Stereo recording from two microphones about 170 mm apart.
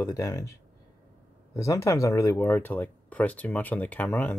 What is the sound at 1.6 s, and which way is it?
Speech, 20° left (ahead or behind).